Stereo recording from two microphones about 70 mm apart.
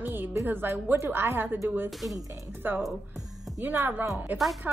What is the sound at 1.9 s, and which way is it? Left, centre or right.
Speech, centre.